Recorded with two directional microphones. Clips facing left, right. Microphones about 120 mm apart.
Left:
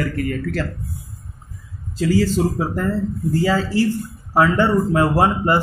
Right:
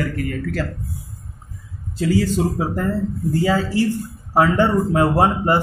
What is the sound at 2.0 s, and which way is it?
Speech, 20° right (ahead or behind).